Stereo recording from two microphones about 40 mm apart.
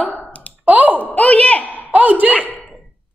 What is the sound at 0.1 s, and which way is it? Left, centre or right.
Clicking, left.